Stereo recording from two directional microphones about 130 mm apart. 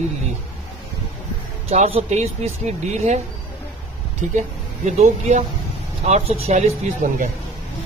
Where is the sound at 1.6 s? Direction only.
50° right (ahead or behind).